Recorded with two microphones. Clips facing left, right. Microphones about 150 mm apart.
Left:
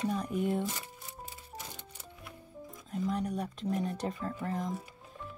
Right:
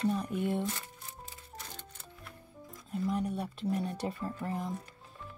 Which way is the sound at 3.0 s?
5° right (ahead or behind).